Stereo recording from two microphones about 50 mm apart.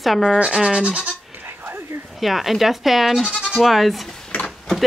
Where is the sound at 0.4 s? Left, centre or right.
Centre.